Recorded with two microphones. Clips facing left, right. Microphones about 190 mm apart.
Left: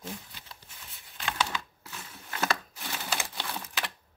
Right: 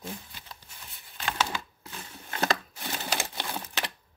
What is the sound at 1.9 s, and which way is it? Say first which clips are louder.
Crumpling: right 3 dB; 30° right (ahead or behind).